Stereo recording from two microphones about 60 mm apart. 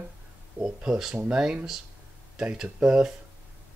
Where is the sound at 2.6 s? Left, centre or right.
Centre.